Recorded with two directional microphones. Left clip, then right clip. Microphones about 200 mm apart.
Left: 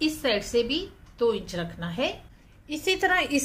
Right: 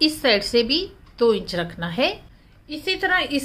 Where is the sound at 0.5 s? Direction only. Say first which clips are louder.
Right 6 dB; 20° right (ahead or behind).